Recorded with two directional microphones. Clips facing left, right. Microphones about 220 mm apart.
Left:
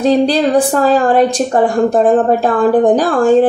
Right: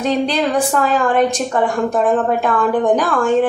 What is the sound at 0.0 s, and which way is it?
Speech, 35° left (ahead or behind).